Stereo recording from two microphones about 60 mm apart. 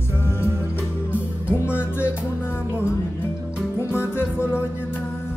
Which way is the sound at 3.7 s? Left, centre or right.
Left.